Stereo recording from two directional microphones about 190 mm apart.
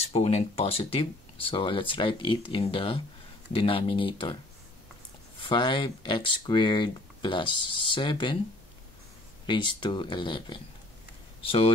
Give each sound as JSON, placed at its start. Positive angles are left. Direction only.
{"t": 0.0, "sound": "speech", "side_deg": 35}
{"t": 5.4, "sound": "speech", "side_deg": 25}
{"t": 9.5, "sound": "speech", "side_deg": 25}